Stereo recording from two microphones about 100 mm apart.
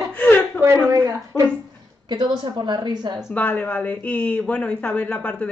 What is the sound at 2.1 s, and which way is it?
A woman's voice, 50° right (ahead or behind).